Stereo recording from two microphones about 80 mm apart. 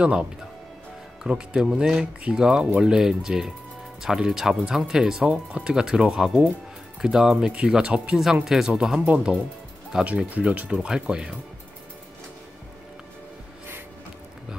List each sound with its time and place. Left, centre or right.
0.0 s speech: centre